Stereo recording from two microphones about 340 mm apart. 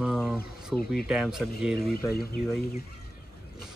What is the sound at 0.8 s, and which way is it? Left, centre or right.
Speech, left.